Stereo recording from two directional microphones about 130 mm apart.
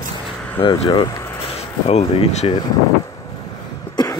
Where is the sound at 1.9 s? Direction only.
55° left (ahead or behind).